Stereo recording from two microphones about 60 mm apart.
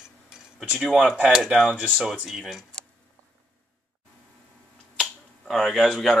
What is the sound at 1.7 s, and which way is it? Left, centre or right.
Speech, right.